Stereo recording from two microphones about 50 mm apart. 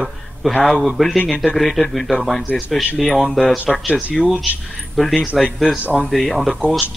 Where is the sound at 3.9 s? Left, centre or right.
Left.